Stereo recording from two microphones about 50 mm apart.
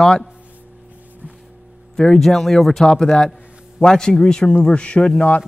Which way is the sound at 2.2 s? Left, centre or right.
Centre.